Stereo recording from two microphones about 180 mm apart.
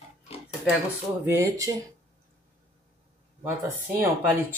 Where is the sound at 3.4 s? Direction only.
10° right (ahead or behind).